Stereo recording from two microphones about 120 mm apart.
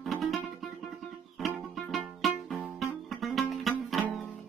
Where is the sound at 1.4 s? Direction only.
Centre (ahead or behind).